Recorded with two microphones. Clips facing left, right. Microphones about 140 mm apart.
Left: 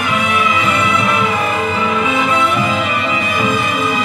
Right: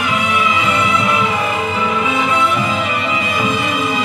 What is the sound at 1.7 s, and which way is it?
Music, 55° left (ahead or behind).